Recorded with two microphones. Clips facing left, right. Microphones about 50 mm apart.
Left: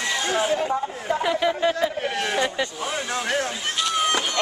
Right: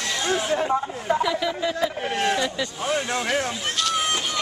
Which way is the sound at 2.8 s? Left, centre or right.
Centre.